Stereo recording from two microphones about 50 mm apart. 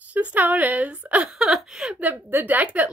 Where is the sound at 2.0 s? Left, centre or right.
Right.